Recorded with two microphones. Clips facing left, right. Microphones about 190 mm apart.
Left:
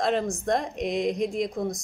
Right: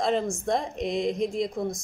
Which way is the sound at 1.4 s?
Centre (ahead or behind).